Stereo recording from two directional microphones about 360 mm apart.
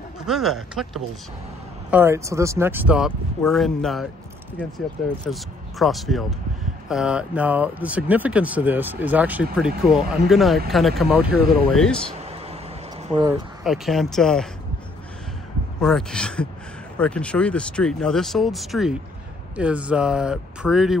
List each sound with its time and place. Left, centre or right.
0.3 s speech: centre
13.1 s speech: centre
13.7 s speech: centre
15.8 s speech: centre